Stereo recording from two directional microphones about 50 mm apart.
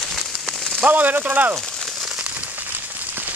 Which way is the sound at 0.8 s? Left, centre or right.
Right.